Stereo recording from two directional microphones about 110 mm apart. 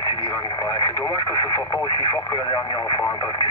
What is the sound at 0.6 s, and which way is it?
Speech, 30° left (ahead or behind).